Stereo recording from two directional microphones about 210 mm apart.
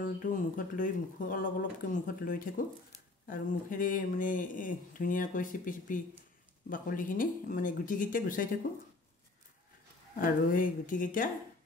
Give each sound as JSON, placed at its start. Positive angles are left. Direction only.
{"t": 0.2, "sound": "speech", "side_deg": 40}
{"t": 10.1, "sound": "speech", "side_deg": 40}